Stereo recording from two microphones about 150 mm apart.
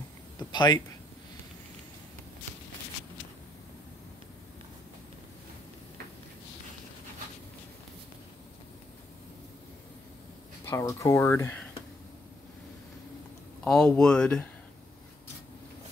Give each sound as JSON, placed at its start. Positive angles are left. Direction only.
{"t": 0.5, "sound": "speech", "side_deg": 30}
{"t": 10.6, "sound": "speech", "side_deg": 20}
{"t": 13.7, "sound": "speech", "side_deg": 5}